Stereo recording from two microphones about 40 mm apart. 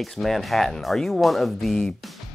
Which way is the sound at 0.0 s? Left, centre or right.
Centre.